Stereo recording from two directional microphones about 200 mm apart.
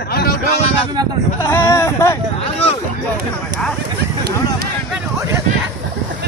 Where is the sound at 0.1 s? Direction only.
50° left (ahead or behind).